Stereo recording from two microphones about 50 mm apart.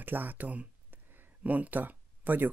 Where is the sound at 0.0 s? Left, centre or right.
Right.